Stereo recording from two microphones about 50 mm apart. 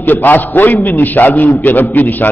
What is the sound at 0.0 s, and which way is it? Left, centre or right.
A man's voice, left.